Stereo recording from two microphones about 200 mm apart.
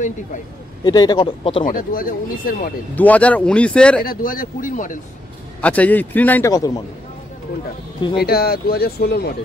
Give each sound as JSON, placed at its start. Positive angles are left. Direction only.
{"t": 0.8, "sound": "speech", "side_deg": 20}
{"t": 1.7, "sound": "speech", "side_deg": 45}
{"t": 3.0, "sound": "a man's voice", "side_deg": 5}
{"t": 4.0, "sound": "speech", "side_deg": 45}
{"t": 5.6, "sound": "a man's voice", "side_deg": 5}
{"t": 8.2, "sound": "speech", "side_deg": 50}